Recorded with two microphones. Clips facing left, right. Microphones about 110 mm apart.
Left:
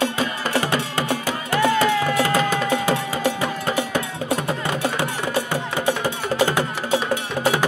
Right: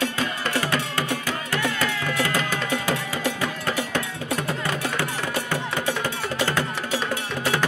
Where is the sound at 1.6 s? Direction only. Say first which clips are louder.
Left 10 dB; 25° left (ahead or behind).